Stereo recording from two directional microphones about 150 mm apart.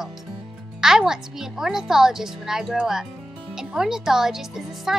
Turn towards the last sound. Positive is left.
turn(degrees=0)  # may be behind; listen again after turning